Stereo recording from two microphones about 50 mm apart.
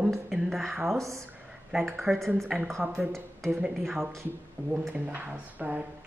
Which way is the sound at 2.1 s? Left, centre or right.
Centre.